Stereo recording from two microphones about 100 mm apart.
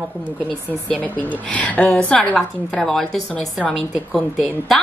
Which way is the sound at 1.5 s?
15° left (ahead or behind).